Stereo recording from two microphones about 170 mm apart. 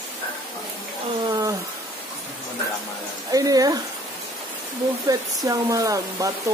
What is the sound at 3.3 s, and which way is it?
Speech, 20° right (ahead or behind).